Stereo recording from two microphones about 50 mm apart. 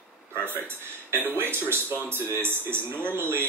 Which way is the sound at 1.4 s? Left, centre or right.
Right.